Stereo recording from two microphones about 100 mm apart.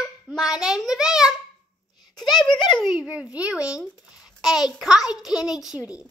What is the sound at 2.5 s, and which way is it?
Speech, 50° left (ahead or behind).